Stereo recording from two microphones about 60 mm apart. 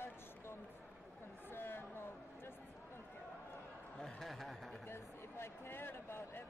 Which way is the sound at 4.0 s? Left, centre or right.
Centre.